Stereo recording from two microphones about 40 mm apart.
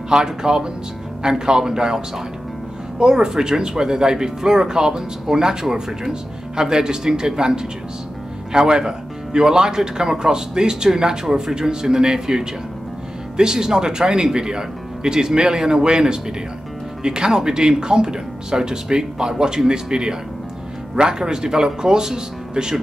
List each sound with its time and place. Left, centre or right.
0.1 s speech: centre